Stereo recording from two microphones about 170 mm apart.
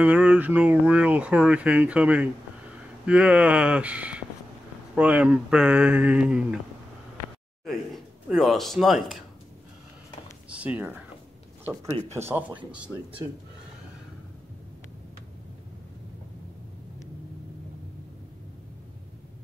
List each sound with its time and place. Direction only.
0.0 s speech: 10° right (ahead or behind)
7.6 s speech: centre (ahead or behind)
10.5 s speech: 10° right (ahead or behind)